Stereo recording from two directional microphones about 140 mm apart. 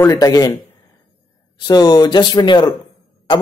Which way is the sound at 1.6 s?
30° left (ahead or behind).